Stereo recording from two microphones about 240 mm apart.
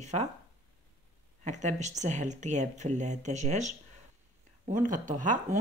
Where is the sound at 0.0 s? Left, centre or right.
Right.